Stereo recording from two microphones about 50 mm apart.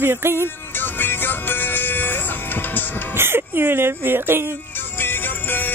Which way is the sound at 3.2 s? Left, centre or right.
Right.